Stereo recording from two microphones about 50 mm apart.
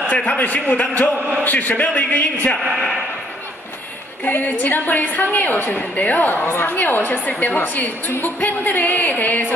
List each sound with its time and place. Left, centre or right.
0.4 s a woman's voice: left
4.2 s a woman's voice: left
7.3 s a woman's voice: left
7.6 s a woman's voice: left